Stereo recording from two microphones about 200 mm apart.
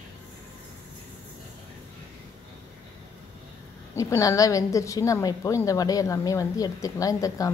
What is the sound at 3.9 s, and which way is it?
A woman's voice, 15° left (ahead or behind).